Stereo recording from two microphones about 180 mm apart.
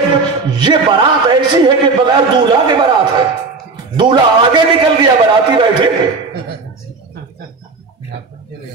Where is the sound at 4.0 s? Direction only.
25° right (ahead or behind).